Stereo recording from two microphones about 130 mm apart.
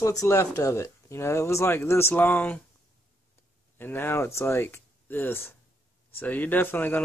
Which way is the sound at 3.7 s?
15° left (ahead or behind).